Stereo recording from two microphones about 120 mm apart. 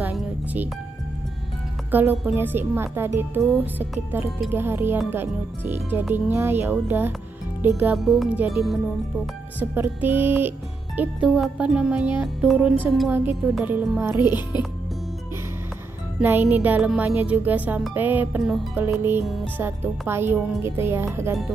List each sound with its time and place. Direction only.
0.1 s music: 10° right (ahead or behind)
1.9 s speech: 15° right (ahead or behind)
8.0 s speech: centre (ahead or behind)
9.6 s speech: 15° right (ahead or behind)
11.2 s speech: centre (ahead or behind); by 14.4 s 20° right (ahead or behind)
16.2 s a woman's voice: 15° right (ahead or behind)